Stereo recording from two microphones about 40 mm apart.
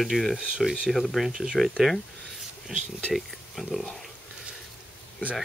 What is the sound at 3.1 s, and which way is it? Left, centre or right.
Speech, centre.